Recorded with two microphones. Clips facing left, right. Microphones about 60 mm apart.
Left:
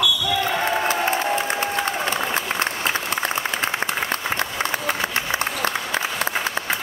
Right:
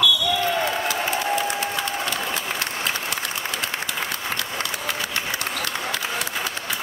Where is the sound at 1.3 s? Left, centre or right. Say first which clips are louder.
Left 2 dB; left.